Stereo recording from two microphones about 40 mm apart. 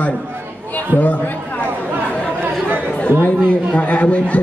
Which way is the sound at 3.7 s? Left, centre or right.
Left.